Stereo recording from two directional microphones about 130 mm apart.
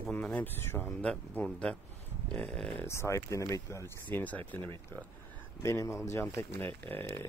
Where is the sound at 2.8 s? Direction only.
20° left (ahead or behind).